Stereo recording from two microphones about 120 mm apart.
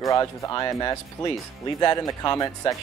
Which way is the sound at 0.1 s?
25° left (ahead or behind).